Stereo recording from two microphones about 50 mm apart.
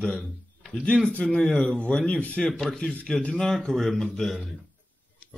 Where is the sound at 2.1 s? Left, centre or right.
Left.